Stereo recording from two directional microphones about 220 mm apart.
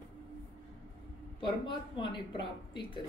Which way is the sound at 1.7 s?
20° left (ahead or behind).